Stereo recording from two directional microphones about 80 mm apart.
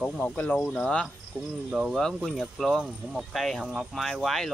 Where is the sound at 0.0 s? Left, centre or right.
Centre.